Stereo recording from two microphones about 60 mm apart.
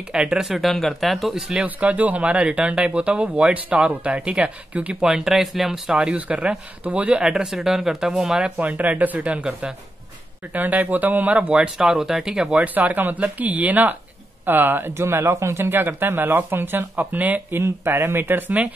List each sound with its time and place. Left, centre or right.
0.1 s speech: centre
0.6 s speech: centre
1.6 s speech: right
5.0 s speech: centre
6.1 s speech: right
8.5 s speech: right
10.5 s speech: right; by 12.5 s centre
12.5 s speech: right
17.6 s speech: right